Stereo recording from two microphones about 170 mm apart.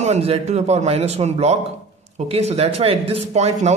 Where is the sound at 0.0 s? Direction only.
40° right (ahead or behind).